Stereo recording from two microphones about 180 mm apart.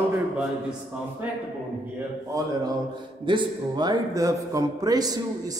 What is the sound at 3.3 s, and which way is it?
A man's voice, 25° right (ahead or behind).